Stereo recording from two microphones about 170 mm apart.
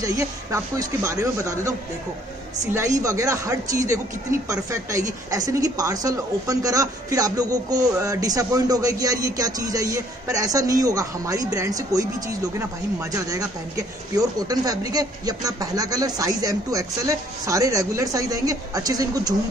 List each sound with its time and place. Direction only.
0.0 s a woman's voice: 20° right (ahead or behind)